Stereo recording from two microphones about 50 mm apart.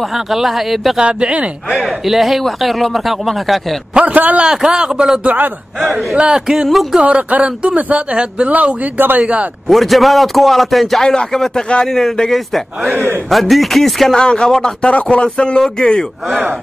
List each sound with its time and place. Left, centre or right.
0.1 s speech: centre
0.9 s speech: centre
1.7 s speech: centre
4.0 s speech: right
4.5 s a man's voice: centre
5.2 s speech: right
5.8 s speech: centre
6.1 s speech: right
6.4 s a man's voice: centre
7.0 s speech: right
8.5 s speech: right
9.2 s speech: right
9.7 s speech: centre
14.2 s speech: centre